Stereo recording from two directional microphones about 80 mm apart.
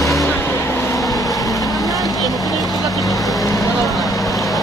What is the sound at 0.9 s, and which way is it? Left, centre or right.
Vehicle, left.